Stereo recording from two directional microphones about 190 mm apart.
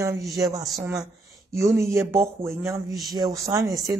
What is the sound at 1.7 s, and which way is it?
Speech, 15° right (ahead or behind).